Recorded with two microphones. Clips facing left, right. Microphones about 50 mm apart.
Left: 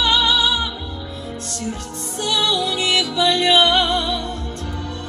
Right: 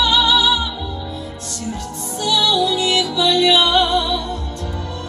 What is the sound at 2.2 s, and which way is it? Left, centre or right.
Music, left.